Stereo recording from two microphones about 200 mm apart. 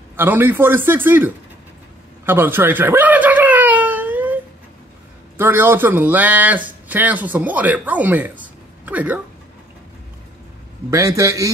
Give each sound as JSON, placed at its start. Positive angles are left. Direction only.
{"t": 0.1, "sound": "speech", "side_deg": -10}
{"t": 2.2, "sound": "a sound", "side_deg": -10}
{"t": 5.4, "sound": "speech", "side_deg": -10}
{"t": 10.9, "sound": "speech", "side_deg": -15}